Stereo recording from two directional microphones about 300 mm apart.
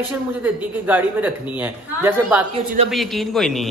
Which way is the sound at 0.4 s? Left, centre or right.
Centre.